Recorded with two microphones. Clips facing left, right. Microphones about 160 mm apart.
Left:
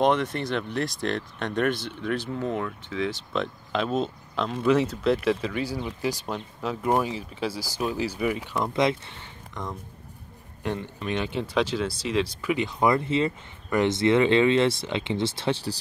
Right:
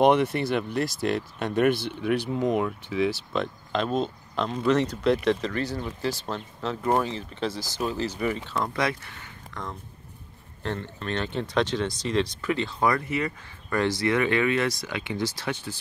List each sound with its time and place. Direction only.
0.0 s speech: 10° right (ahead or behind)
3.7 s speech: 5° left (ahead or behind); by 15.8 s 35° left (ahead or behind)